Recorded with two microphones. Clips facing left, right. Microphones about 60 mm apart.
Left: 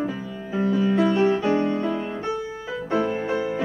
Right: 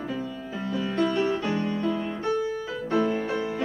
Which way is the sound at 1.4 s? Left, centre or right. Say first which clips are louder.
Left 6 dB; left.